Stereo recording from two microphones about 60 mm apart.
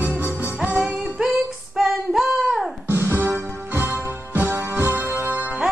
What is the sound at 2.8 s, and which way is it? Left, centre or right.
Music, right.